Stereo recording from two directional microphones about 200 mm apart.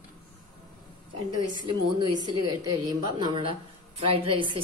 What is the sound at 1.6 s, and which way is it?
A woman's voice, 20° right (ahead or behind).